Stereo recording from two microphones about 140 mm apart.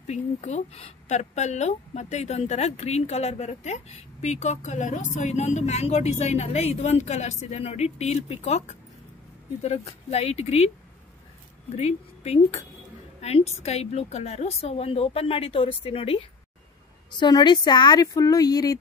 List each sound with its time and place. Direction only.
0.0 s speech: 55° left (ahead or behind)
11.7 s speech: 50° left (ahead or behind); by 18.8 s 25° left (ahead or behind)